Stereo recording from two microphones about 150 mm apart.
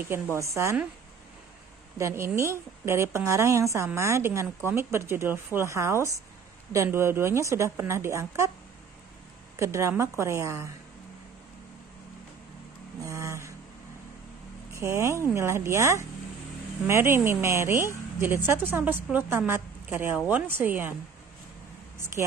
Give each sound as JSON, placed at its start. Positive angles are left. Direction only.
{"t": 0.4, "sound": "a woman's voice", "side_deg": -20}
{"t": 2.0, "sound": "a woman's voice", "side_deg": -20}
{"t": 9.6, "sound": "a woman's voice", "side_deg": -20}
{"t": 13.0, "sound": "vehicle", "side_deg": -20}
{"t": 14.7, "sound": "a woman's voice", "side_deg": -20}